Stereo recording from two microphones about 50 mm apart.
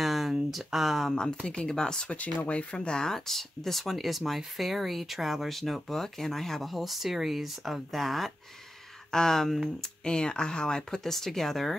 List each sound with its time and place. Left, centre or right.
0.0 s a sound: centre
1.5 s speech: centre
2.1 s speech: left; by 9.8 s centre
10.0 s speech: centre